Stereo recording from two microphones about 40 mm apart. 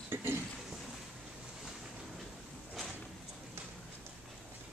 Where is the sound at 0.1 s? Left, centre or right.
Right.